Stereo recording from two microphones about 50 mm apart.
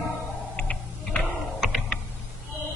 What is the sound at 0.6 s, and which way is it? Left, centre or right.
Tick-tock, left.